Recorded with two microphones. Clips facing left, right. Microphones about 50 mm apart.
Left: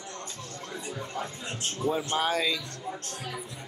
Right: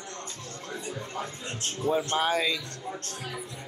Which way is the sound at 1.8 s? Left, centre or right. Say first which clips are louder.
Right 2 dB; centre.